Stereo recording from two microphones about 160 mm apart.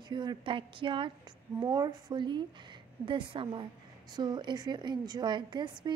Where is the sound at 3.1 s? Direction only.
30° right (ahead or behind).